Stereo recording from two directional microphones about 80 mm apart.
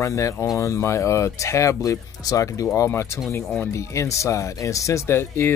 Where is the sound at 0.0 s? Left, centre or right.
Left.